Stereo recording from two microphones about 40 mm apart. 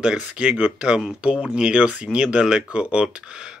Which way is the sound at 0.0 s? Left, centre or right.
Right.